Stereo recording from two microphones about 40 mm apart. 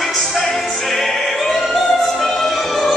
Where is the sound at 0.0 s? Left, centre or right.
Centre.